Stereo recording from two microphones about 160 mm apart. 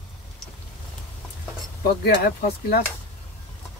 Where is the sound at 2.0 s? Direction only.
80° left.